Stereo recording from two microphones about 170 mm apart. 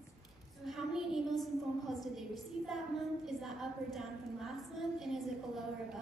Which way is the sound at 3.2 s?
Centre (ahead or behind).